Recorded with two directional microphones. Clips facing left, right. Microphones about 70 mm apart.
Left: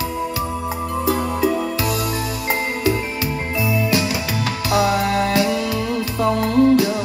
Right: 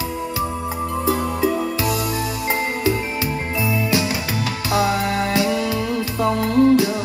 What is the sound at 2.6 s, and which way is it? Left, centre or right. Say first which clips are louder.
Music: left 1 dB; right.